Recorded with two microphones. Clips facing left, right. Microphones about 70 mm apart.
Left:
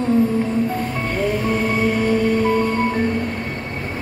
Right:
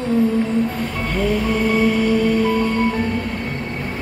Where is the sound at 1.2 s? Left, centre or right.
Left.